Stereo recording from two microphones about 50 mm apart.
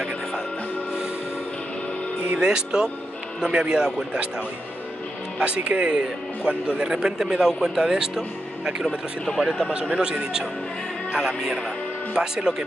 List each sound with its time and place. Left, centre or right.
2.3 s speech: centre
5.4 s speech: right
9.4 s speech: centre